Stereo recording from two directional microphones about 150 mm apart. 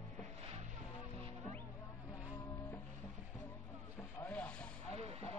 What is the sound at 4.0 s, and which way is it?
Rub, 10° left (ahead or behind).